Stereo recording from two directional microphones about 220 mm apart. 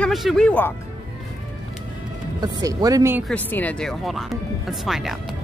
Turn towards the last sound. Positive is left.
turn(degrees=0)  # may be behind; listen again after turning